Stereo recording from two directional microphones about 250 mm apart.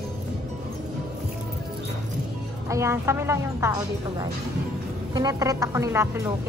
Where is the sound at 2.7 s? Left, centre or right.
Centre.